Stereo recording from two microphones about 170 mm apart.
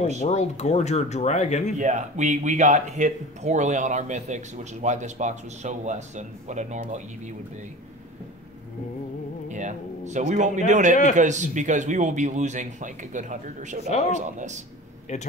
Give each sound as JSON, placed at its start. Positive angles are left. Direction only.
{"t": 0.2, "sound": "speech", "side_deg": 40}
{"t": 1.8, "sound": "speech", "side_deg": -45}
{"t": 9.5, "sound": "speech", "side_deg": -45}